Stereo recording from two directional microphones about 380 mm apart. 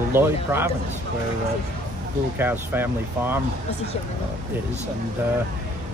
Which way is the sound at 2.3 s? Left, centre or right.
Centre.